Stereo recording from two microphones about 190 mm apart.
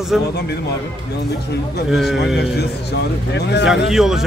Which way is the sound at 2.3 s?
60° left (ahead or behind).